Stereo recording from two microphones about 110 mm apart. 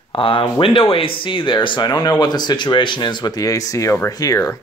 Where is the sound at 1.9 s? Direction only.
35° left (ahead or behind).